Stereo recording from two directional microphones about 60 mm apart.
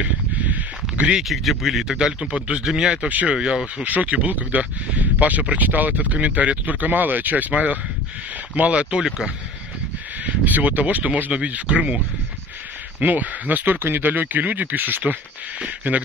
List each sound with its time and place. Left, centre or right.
0.0 s a sound: right
1.3 s speech: centre
3.1 s speech: right
3.3 s speech: centre
3.8 s speech: right
10.2 s speech: right
13.0 s speech: right
15.6 s speech: right